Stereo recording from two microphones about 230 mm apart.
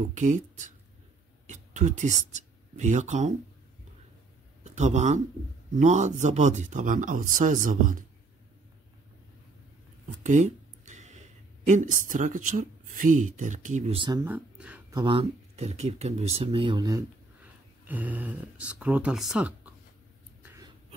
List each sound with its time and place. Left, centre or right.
0.1 s speech: right
4.6 s speech: right
10.2 s speech: right
14.2 s speech: centre
20.4 s a sound: centre